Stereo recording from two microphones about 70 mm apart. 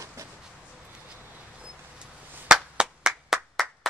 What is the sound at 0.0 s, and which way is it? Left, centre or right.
Vehicle, right.